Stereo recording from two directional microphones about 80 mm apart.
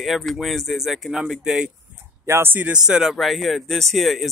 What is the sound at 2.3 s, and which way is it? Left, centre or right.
Speech, right.